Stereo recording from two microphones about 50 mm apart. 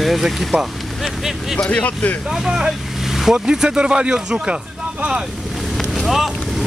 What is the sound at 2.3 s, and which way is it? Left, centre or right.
Speech, centre.